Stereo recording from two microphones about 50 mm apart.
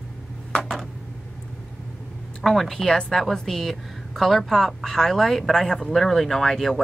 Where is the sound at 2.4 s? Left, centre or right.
Centre.